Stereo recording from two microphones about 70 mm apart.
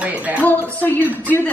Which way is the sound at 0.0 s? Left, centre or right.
Centre.